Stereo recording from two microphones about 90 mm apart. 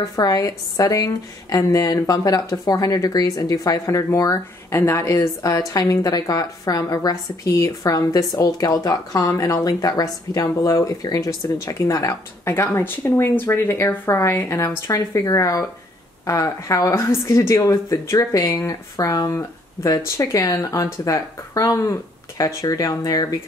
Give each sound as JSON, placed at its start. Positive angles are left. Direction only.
{"t": 0.0, "sound": "a woman's voice", "side_deg": 45}